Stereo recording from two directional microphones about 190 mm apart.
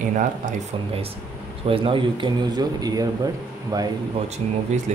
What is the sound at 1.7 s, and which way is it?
Speech, 30° right (ahead or behind).